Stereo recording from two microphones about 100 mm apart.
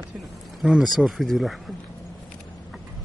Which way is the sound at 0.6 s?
Centre (ahead or behind).